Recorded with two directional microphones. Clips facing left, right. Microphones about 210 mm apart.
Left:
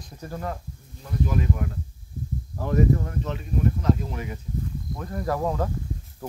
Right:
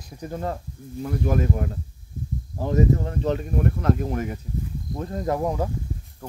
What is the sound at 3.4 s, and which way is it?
Speech, 60° right (ahead or behind).